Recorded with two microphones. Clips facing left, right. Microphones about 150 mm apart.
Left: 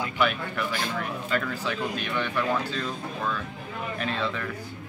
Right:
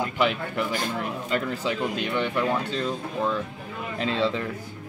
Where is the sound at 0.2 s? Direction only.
25° right (ahead or behind).